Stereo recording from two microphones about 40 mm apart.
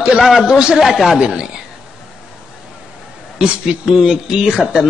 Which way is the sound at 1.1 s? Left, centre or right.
Centre.